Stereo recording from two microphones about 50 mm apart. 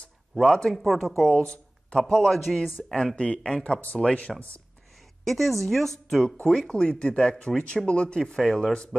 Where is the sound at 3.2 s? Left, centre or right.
Centre.